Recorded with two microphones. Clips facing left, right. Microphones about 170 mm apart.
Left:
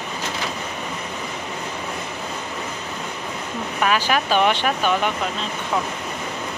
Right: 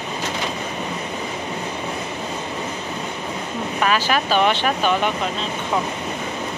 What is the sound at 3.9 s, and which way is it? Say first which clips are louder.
Speech: even; 15° left (ahead or behind).